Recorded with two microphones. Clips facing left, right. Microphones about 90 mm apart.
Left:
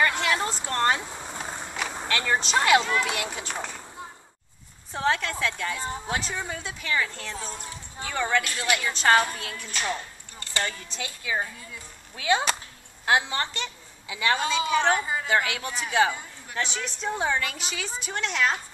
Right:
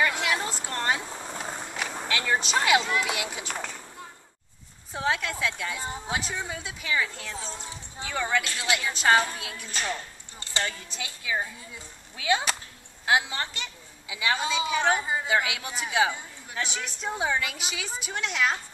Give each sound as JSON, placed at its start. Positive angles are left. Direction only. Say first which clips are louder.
{"t": 0.0, "sound": "vehicle", "louder": "left 2 dB", "side_deg": -5}
{"t": 2.0, "sound": "speech", "louder": "left 1 dB", "side_deg": -5}
{"t": 3.5, "sound": "speech", "louder": "left 1 dB", "side_deg": 10}
{"t": 4.9, "sound": "a woman's voice", "louder": "left 2 dB", "side_deg": -5}
{"t": 10.7, "sound": "speech", "louder": "left 2 dB", "side_deg": -5}
{"t": 13.0, "sound": "a woman's voice", "louder": "left 1 dB", "side_deg": -5}
{"t": 15.0, "sound": "a woman's voice", "louder": "even", "side_deg": -20}
{"t": 15.2, "sound": "a woman's voice", "louder": "left 1 dB", "side_deg": -5}